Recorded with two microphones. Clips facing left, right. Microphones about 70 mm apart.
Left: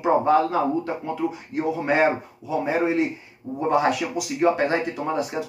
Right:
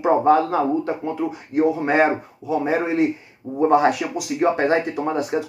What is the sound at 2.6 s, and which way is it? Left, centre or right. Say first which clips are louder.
Speech: right 1 dB; right.